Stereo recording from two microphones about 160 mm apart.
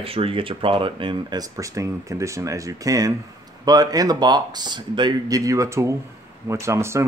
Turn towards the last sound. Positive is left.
turn(degrees=-15)  # may be behind; listen again after turning